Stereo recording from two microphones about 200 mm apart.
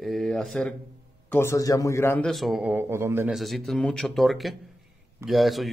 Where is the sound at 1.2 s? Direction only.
10° left (ahead or behind).